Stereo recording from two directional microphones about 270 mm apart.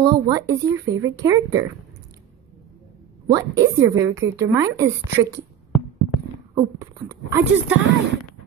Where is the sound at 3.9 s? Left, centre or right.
Centre.